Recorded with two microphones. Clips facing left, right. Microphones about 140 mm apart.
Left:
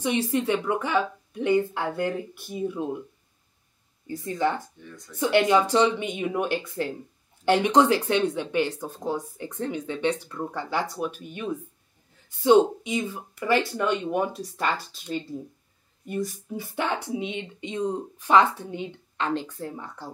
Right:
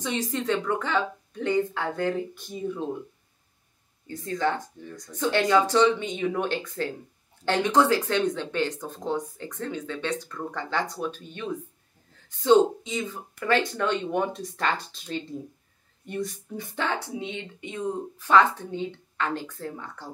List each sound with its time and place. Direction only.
0.3 s speech: 15° left (ahead or behind)
4.1 s speech: 15° left (ahead or behind)
4.8 s speech: 35° right (ahead or behind)
5.1 s speech: 15° left (ahead or behind)
12.4 s speech: 15° left (ahead or behind)
16.7 s speech: 15° left (ahead or behind)